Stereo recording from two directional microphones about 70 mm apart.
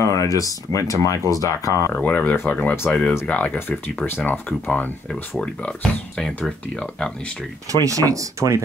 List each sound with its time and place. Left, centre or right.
0.0 s speech: left
2.0 s speech: left
2.9 s speech: centre
7.7 s speech: right